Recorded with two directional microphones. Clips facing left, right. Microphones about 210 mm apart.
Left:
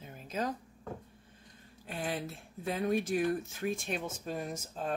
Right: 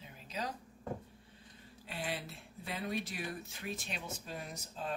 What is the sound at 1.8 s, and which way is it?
Speech, 45° left (ahead or behind).